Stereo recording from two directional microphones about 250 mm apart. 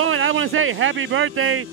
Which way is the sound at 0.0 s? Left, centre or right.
Right.